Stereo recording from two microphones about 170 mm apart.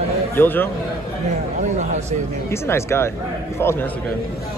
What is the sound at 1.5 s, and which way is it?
Speech, 45° right (ahead or behind).